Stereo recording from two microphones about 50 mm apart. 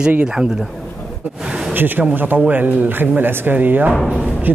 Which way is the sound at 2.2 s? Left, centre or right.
Right.